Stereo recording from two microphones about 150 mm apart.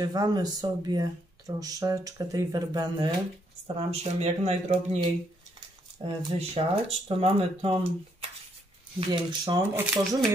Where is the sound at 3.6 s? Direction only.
40° right (ahead or behind).